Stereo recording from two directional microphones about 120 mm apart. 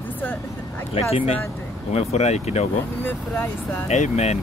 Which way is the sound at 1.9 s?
65° left (ahead or behind).